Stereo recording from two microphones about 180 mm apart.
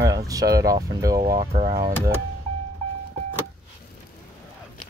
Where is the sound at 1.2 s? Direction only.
55° right (ahead or behind).